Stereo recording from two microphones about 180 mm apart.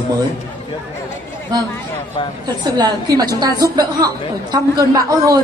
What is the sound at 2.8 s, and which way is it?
A woman's voice, 20° right (ahead or behind).